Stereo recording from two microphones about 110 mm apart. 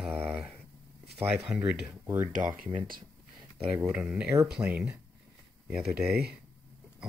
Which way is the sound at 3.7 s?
10° right (ahead or behind).